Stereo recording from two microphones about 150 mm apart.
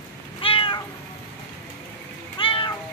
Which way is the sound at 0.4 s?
35° left (ahead or behind).